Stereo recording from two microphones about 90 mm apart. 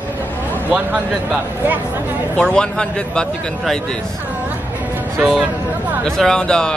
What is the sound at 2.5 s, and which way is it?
Speech, 10° left (ahead or behind).